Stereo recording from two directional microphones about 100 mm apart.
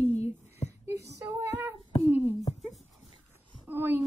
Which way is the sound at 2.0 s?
20° right (ahead or behind).